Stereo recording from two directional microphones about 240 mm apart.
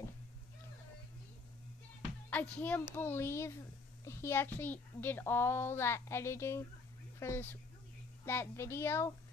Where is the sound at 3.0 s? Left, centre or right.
Centre.